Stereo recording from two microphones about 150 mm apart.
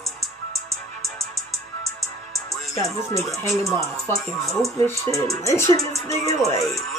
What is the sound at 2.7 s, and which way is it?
Speech, 20° left (ahead or behind).